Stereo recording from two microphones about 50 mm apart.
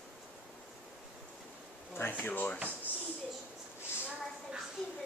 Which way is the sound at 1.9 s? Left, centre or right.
Left.